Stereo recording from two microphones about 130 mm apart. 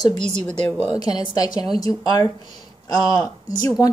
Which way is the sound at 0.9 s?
30° left (ahead or behind).